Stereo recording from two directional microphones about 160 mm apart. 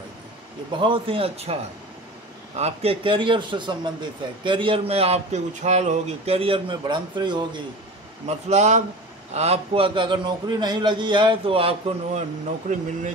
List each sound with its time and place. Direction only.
0.7 s a man's voice: 30° right (ahead or behind)
8.3 s a man's voice: 45° right (ahead or behind)